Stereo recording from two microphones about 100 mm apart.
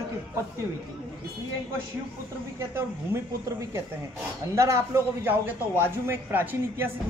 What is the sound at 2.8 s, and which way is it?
A man's voice, 30° right (ahead or behind).